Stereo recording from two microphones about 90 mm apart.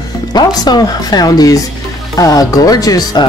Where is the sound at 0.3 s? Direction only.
50° left (ahead or behind).